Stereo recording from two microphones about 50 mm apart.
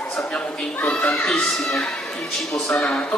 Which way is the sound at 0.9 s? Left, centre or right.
Left.